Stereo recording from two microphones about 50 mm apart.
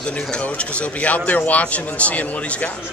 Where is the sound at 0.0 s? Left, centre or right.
Centre.